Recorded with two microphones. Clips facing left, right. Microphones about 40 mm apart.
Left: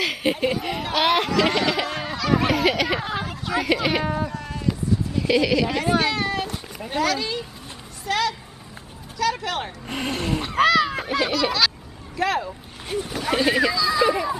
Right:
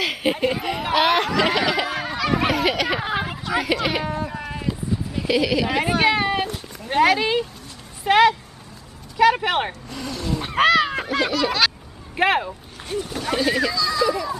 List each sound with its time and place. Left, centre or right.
0.0 s a sound: centre
3.0 s speech: centre
3.4 s speech: centre
4.3 s sheep: centre
5.3 s speech: centre
5.7 s speech: centre
9.8 s speech: left
10.4 s speech: centre
12.2 s speech: right
12.8 s speech: centre
14.0 s a child's voice: left